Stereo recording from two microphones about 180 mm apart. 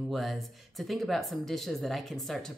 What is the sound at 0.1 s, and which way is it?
Speech, centre (ahead or behind).